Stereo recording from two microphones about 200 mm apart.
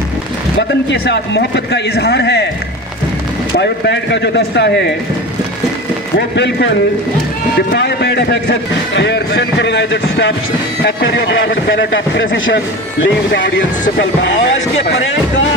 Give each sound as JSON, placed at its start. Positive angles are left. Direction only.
{"t": 0.6, "sound": "a man's voice", "side_deg": 60}
{"t": 3.5, "sound": "a man's voice", "side_deg": 55}
{"t": 6.1, "sound": "a man's voice", "side_deg": 60}
{"t": 7.7, "sound": "a man's voice", "side_deg": 55}